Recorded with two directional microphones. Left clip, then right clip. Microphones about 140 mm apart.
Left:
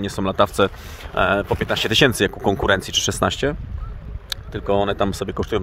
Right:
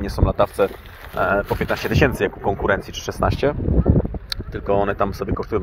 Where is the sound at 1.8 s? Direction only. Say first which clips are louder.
Left 4 dB; 90° left.